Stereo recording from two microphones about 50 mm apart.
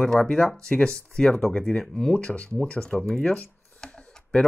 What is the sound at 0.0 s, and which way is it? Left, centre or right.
Speech, centre.